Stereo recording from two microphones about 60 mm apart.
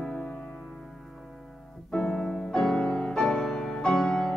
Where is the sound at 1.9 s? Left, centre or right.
Centre.